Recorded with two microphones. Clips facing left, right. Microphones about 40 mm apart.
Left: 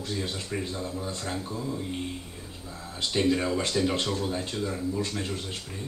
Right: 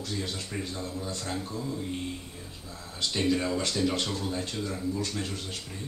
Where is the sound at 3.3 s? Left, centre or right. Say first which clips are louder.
Left 2 dB; centre.